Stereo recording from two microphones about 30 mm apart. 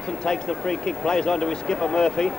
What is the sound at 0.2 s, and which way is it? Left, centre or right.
Speech, left.